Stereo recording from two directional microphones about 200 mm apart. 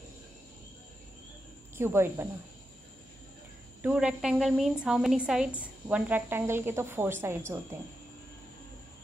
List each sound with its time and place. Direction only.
1.8 s a woman's voice: 10° right (ahead or behind)
3.8 s a woman's voice: 5° right (ahead or behind)